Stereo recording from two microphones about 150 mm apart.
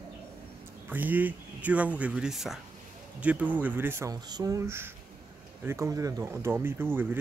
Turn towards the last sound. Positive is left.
turn(degrees=-15)  # may be behind; listen again after turning